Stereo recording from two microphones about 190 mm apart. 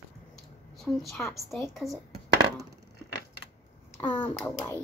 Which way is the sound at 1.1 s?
Centre (ahead or behind).